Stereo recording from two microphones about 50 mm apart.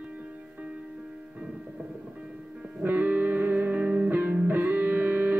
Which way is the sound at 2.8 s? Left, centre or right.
Right.